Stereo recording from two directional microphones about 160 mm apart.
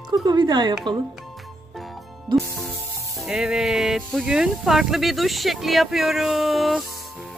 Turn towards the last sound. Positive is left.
turn(degrees=0)  # may be behind; listen again after turning